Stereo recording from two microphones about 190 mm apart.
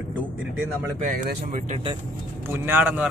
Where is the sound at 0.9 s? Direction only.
45° right (ahead or behind).